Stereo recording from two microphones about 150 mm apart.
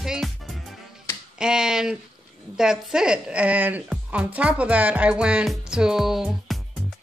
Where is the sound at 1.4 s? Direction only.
5° right (ahead or behind).